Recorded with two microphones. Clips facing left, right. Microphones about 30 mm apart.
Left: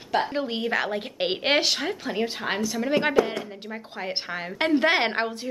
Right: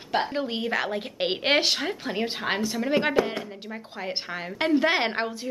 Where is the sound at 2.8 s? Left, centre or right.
Centre.